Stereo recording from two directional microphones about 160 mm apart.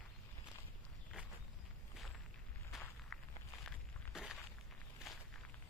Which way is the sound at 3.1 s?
5° left (ahead or behind).